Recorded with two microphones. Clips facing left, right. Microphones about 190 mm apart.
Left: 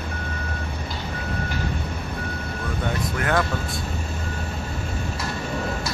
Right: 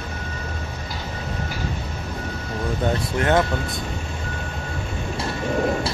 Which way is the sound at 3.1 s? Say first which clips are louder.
Right 4 dB; 25° right (ahead or behind).